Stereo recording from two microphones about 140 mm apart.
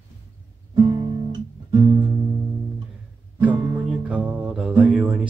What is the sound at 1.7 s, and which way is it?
Music, 30° right (ahead or behind).